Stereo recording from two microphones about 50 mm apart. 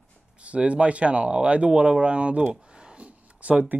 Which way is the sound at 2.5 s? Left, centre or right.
Right.